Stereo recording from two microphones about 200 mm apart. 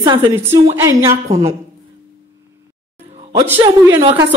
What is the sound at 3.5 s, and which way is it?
Speech, 10° right (ahead or behind).